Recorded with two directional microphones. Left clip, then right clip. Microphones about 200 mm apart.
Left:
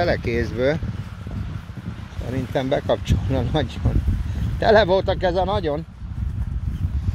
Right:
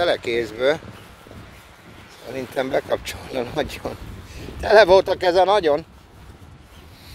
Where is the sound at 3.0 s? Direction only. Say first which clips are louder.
Even; 35° right (ahead or behind).